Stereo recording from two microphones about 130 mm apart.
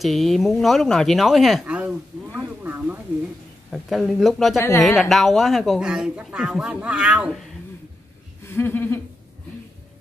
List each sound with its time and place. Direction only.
0.0 s speech: centre (ahead or behind)
3.7 s speech: centre (ahead or behind)
4.6 s speech: 20° left (ahead or behind)
4.8 s speech: centre (ahead or behind)
8.5 s a sound: 15° left (ahead or behind)